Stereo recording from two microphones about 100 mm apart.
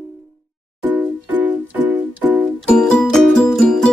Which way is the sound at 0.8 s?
20° right (ahead or behind).